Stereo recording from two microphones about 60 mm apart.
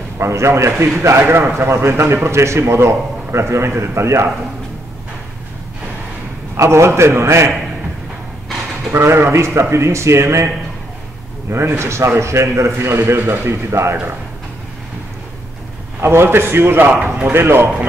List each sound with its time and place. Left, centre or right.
0.2 s a man's voice: right
6.5 s a man's voice: right
8.9 s a man's voice: right
11.5 s a man's voice: right
13.5 s a man's voice: right
16.0 s a man's voice: right